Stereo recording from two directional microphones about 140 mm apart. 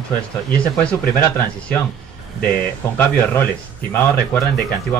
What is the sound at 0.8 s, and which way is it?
Speech, 10° left (ahead or behind).